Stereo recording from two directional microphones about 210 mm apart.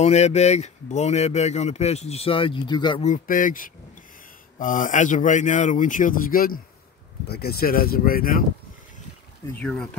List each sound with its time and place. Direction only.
0.0 s speech: 30° left (ahead or behind)
3.1 s speech: 40° left (ahead or behind)
9.6 s speech: 5° left (ahead or behind)